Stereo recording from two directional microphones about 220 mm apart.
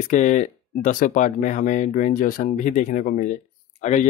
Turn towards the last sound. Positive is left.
turn(degrees=35)  # may be behind; listen again after turning